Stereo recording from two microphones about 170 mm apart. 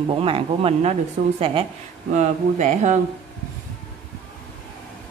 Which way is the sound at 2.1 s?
45° right (ahead or behind).